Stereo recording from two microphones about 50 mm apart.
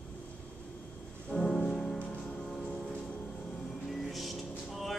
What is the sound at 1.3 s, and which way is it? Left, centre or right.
Music, centre.